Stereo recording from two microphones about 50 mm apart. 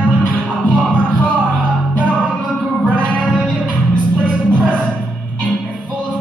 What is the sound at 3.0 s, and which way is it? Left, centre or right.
Music, left.